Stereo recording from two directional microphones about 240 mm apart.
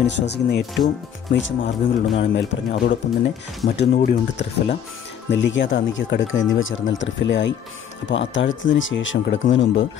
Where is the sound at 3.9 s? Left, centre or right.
Left.